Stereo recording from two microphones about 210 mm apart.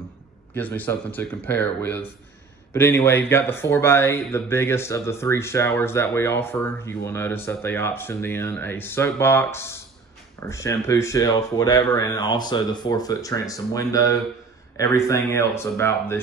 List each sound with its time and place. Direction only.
0.6 s speech: 10° left (ahead or behind)